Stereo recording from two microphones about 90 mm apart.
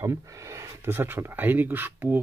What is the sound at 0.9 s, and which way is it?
Speech, 25° right (ahead or behind).